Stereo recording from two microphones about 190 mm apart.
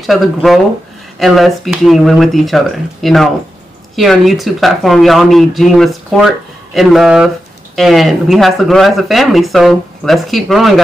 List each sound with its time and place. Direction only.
0.0 s speech: centre (ahead or behind)